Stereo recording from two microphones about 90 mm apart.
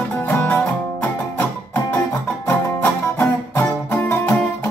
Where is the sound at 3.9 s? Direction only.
20° left (ahead or behind).